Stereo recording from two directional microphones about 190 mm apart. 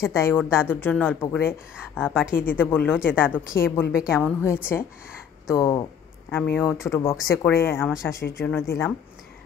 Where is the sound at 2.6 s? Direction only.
10° left (ahead or behind).